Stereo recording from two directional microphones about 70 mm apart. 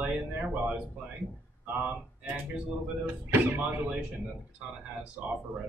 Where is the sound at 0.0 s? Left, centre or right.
Centre.